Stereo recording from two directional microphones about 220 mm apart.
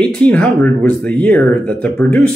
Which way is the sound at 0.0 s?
5° left (ahead or behind).